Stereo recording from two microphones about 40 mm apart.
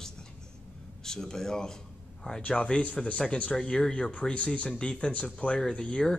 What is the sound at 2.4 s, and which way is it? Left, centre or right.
A man's voice, left.